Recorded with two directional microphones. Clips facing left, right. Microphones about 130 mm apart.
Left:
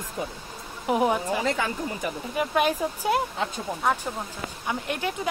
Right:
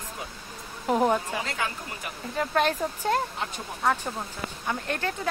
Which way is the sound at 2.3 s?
10° left (ahead or behind).